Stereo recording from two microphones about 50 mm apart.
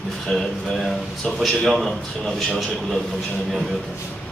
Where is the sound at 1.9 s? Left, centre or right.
Centre.